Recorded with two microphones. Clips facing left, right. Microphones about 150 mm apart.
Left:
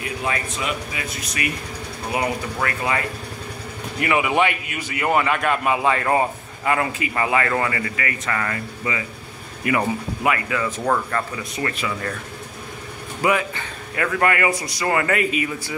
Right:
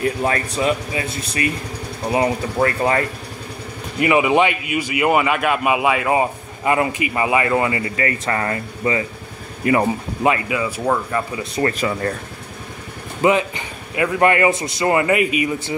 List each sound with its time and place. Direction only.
0.0 s speech: 40° right (ahead or behind)
4.0 s a man's voice: 20° right (ahead or behind)
6.6 s a man's voice: 20° right (ahead or behind)
10.6 s a man's voice: 10° right (ahead or behind)
11.5 s speech: 35° right (ahead or behind)
13.2 s a man's voice: 25° right (ahead or behind)